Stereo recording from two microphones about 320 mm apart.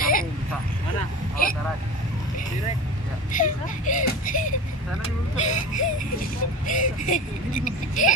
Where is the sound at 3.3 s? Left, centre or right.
Left.